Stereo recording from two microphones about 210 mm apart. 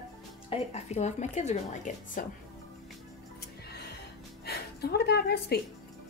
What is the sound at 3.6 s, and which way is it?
Music, 50° left (ahead or behind).